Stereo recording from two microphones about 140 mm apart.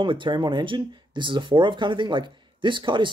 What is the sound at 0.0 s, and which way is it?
Speech, 35° right (ahead or behind).